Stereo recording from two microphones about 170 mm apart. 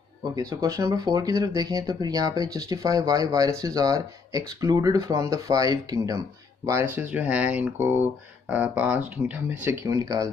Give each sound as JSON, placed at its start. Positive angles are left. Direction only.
{"t": 0.4, "sound": "speech", "side_deg": -20}